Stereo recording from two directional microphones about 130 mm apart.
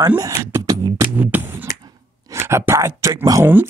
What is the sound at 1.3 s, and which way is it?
Beatboxing, 15° right (ahead or behind).